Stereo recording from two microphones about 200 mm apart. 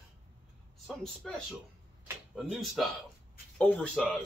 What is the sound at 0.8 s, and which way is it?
Speech, centre (ahead or behind).